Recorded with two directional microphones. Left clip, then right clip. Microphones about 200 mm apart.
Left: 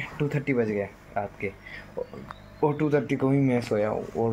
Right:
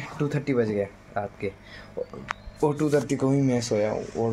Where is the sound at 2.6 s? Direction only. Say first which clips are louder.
Right 1 dB; 15° right (ahead or behind).